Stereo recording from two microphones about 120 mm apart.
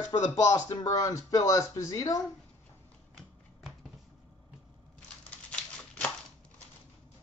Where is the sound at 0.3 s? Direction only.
35° left (ahead or behind).